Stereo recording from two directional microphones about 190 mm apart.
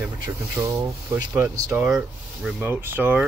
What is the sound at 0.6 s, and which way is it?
Speech, 15° right (ahead or behind).